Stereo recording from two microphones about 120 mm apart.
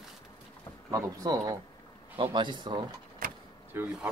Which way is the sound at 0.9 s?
30° right (ahead or behind).